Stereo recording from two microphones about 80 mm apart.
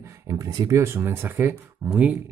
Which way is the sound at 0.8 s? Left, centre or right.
Right.